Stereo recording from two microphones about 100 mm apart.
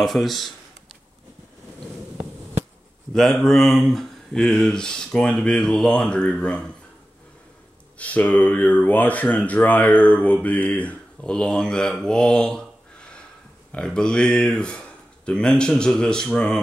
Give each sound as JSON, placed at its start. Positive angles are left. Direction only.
{"t": 0.0, "sound": "speech", "side_deg": 0}
{"t": 3.1, "sound": "speech", "side_deg": 5}
{"t": 8.0, "sound": "speech", "side_deg": 15}
{"t": 12.0, "sound": "mantra", "side_deg": 5}
{"t": 13.7, "sound": "speech", "side_deg": 10}